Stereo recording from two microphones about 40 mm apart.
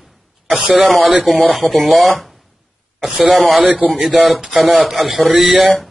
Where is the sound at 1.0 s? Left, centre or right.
Right.